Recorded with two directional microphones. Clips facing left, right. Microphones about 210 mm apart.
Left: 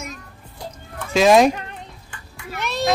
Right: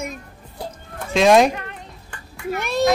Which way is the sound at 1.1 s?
Centre (ahead or behind).